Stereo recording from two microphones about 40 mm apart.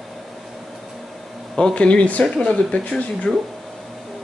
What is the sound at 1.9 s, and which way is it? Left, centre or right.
Speech, left.